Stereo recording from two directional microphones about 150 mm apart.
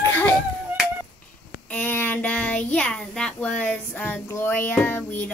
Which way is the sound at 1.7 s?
10° left (ahead or behind).